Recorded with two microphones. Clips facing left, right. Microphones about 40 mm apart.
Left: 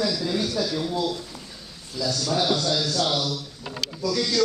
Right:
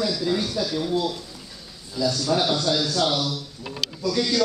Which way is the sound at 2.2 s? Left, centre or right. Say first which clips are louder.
Even; centre.